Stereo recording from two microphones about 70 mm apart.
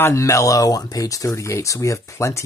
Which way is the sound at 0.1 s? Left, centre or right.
Left.